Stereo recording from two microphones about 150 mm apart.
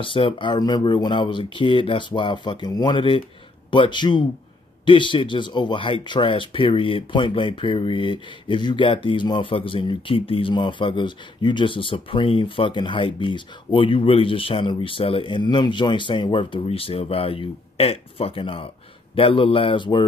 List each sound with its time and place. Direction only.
0.0 s speech: 35° left (ahead or behind)